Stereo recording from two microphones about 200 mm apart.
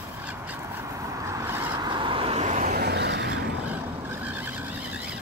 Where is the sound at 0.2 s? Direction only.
10° right (ahead or behind); by 2.7 s 35° right (ahead or behind).